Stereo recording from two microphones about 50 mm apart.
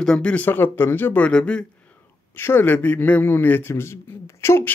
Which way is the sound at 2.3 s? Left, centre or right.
Left.